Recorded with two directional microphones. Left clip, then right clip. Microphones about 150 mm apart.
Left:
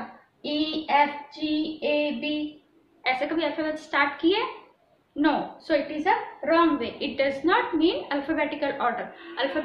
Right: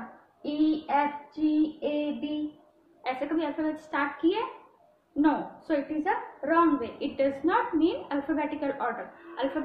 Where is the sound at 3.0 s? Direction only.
20° right (ahead or behind).